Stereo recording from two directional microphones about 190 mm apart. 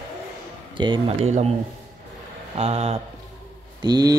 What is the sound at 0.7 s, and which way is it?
Speech, 25° right (ahead or behind).